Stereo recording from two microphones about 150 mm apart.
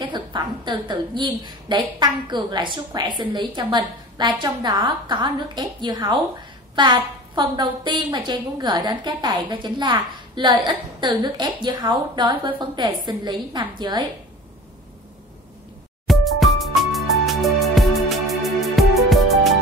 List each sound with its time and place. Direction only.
0.1 s a woman's voice: 30° right (ahead or behind)
16.1 s music: centre (ahead or behind)